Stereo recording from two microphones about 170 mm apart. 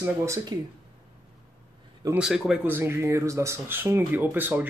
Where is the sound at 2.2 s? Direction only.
5° right (ahead or behind).